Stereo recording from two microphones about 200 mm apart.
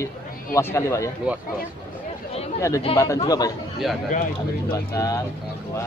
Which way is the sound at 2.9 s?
15° left (ahead or behind).